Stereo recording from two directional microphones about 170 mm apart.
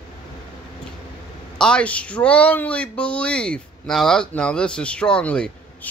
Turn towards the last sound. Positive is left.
turn(degrees=5)  # may be behind; listen again after turning